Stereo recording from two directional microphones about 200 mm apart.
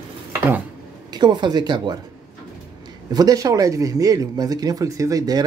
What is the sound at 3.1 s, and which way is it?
Speech, 20° right (ahead or behind).